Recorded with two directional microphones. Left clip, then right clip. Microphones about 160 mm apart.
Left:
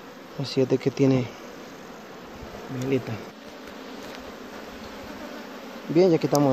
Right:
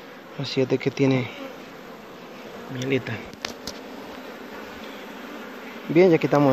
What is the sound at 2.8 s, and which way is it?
Bee, 15° left (ahead or behind).